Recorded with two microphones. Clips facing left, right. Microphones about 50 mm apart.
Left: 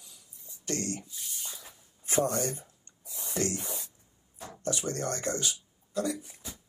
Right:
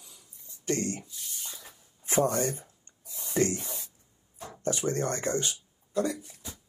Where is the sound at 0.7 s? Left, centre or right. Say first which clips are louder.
Right 4 dB; right.